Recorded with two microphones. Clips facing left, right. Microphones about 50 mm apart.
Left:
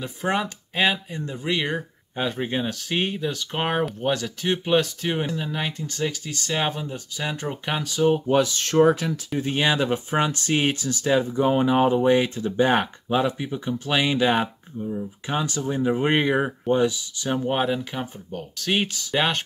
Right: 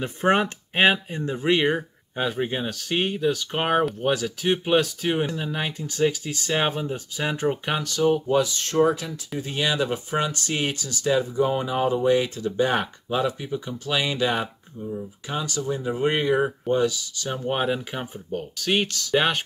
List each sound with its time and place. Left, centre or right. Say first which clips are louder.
0.0 s speech: right 4 dB; right
1.7 s speech: right 4 dB; centre
7.6 s speech: right 1 dB; centre
8.1 s speech: left 1 dB; left
14.8 s speech: left 2 dB; centre
15.2 s speech: left 1 dB; left
17.5 s speech: even; centre
17.7 s speech: left 1 dB; centre
18.6 s speech: even; centre
18.9 s speech: right 2 dB; centre
19.1 s speech: right 1 dB; centre